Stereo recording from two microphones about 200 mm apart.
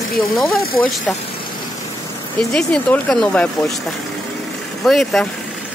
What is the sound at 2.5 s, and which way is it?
Speech, 5° left (ahead or behind).